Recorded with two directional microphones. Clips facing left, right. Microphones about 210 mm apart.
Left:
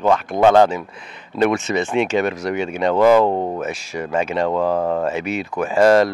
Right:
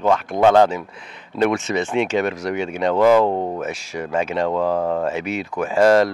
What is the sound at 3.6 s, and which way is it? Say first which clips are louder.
Speech: left 1 dB; 15° left (ahead or behind).